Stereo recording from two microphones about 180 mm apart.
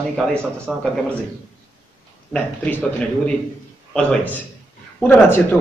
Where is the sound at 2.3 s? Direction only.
10° left (ahead or behind).